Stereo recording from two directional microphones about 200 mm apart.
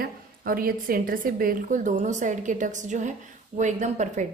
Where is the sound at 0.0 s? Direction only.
45° right (ahead or behind).